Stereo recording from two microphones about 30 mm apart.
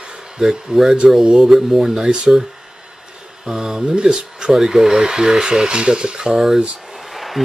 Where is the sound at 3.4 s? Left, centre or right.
Centre.